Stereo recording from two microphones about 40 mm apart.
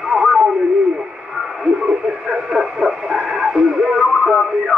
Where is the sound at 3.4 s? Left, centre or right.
Centre.